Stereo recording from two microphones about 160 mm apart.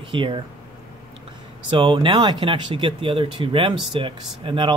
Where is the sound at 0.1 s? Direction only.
30° right (ahead or behind).